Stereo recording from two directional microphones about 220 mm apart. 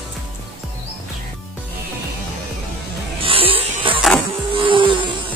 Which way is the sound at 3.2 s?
25° right (ahead or behind).